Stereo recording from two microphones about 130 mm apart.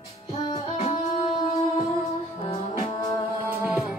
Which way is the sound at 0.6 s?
55° left (ahead or behind).